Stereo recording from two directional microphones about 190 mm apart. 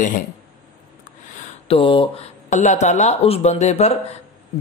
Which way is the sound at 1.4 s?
30° left (ahead or behind).